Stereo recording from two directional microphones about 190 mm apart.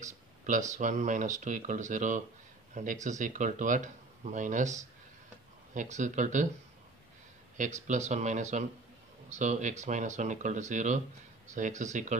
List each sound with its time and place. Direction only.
0.0 s speech: 40° right (ahead or behind)
5.8 s speech: 40° right (ahead or behind)
7.5 s speech: 40° right (ahead or behind)